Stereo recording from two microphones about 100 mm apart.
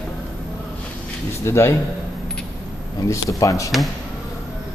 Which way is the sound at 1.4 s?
25° left (ahead or behind).